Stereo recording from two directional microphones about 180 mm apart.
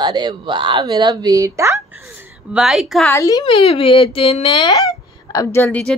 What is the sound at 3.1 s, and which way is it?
Speech, 20° left (ahead or behind).